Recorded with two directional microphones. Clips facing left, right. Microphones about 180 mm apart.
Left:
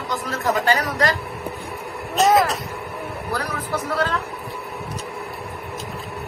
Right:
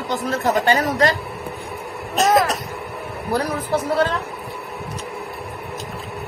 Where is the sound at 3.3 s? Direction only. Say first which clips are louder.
Right 6 dB; 25° right (ahead or behind).